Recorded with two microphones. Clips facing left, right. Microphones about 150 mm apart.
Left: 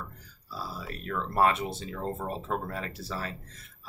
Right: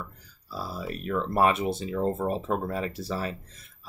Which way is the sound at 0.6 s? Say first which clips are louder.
Right 5 dB; 15° right (ahead or behind).